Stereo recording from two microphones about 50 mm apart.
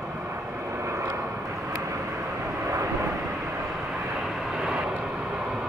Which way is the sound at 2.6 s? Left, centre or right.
Right.